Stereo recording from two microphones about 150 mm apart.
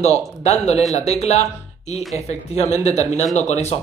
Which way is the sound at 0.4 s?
45° left (ahead or behind).